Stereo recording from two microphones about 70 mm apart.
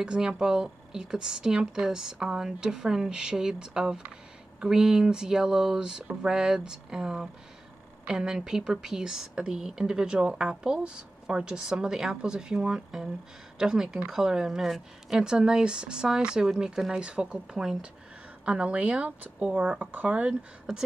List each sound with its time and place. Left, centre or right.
0.0 s a woman's voice: centre